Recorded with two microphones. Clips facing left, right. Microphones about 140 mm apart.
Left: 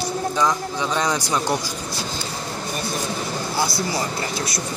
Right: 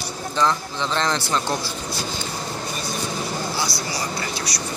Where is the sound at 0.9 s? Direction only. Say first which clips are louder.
Even; 10° left (ahead or behind).